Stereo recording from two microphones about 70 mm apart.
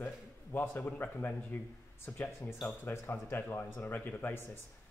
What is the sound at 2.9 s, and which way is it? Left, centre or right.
Speech, left.